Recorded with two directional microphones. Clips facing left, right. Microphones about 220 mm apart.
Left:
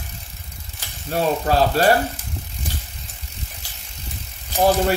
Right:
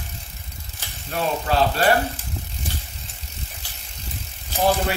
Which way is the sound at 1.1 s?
40° left (ahead or behind).